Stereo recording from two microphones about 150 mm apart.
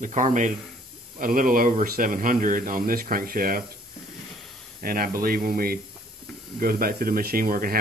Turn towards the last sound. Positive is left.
turn(degrees=-75)  # may be behind; listen again after turning